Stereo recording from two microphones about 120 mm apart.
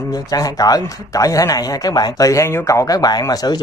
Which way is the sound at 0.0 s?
30° left (ahead or behind).